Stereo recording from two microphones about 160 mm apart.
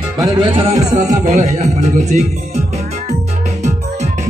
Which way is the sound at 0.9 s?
45° right (ahead or behind).